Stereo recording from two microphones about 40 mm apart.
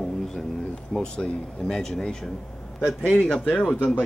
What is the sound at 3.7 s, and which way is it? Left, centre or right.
Speech, left.